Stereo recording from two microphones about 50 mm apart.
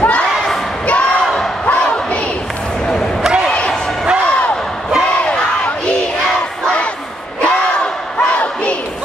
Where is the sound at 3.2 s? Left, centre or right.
Centre.